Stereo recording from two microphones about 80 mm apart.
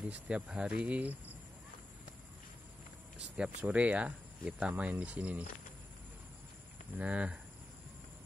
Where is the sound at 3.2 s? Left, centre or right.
Centre.